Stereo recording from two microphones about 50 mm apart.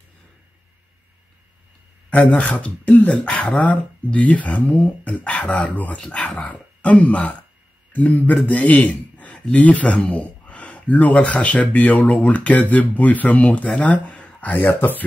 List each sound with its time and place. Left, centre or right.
2.5 s speech: left
3.3 s speech: centre
3.6 s speech: left